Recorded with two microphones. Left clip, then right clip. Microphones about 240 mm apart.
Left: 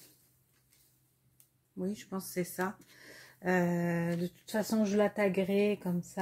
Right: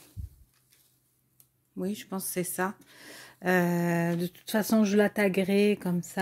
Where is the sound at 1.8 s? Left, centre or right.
Right.